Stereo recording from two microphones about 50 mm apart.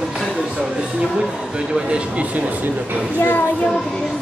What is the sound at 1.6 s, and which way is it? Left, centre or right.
Speech, right.